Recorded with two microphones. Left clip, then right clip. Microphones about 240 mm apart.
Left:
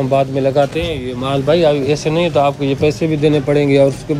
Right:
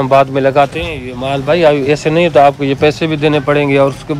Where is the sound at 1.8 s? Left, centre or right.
Right.